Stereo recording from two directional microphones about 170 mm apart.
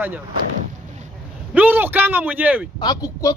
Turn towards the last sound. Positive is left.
turn(degrees=20)  # may be behind; listen again after turning